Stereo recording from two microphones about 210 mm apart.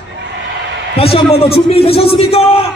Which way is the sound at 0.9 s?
30° left (ahead or behind).